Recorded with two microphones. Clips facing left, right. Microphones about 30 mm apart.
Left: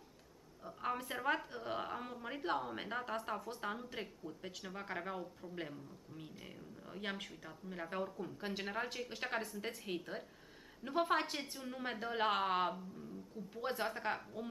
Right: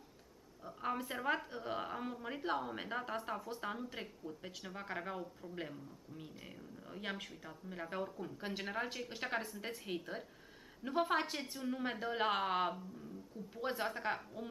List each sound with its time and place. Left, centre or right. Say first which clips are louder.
0.7 s speech: even; centre